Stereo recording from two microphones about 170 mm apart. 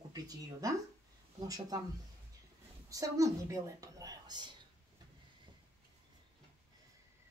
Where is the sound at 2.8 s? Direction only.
20° right (ahead or behind).